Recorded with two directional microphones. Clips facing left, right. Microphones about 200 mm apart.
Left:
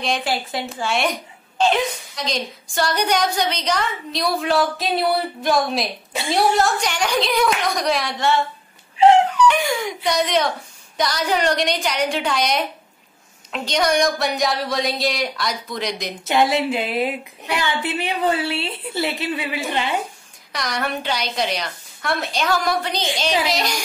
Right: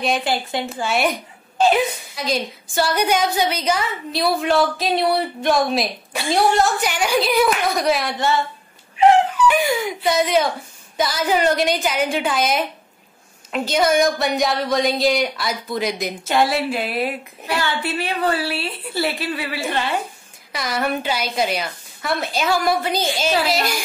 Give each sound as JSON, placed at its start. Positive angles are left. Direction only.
{"t": 0.0, "sound": "a woman's voice", "side_deg": 0}
{"t": 9.0, "sound": "a woman's voice", "side_deg": 30}
{"t": 9.5, "sound": "a woman's voice", "side_deg": -5}
{"t": 16.3, "sound": "a woman's voice", "side_deg": 20}
{"t": 20.5, "sound": "a woman's voice", "side_deg": -5}